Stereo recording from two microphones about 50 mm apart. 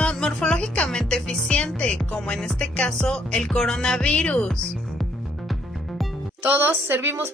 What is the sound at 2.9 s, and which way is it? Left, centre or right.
Speech, centre.